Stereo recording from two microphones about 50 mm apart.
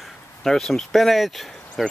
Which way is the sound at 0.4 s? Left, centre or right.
Centre.